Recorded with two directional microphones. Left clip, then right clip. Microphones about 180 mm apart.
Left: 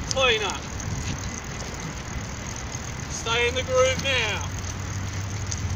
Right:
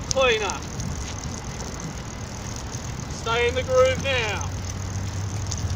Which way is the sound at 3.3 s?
60° left (ahead or behind).